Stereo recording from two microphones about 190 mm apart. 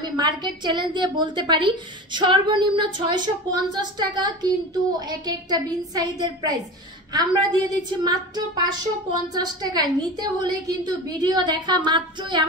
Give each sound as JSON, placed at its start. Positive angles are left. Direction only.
{"t": 0.2, "sound": "a woman's voice", "side_deg": -25}